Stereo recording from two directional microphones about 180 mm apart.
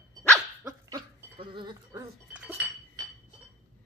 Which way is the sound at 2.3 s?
10° right (ahead or behind).